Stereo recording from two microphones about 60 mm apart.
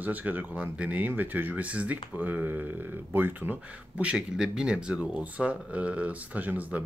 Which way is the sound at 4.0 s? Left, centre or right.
Centre.